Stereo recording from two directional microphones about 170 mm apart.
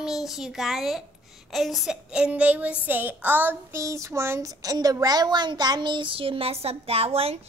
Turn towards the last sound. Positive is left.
turn(degrees=-35)  # may be behind; listen again after turning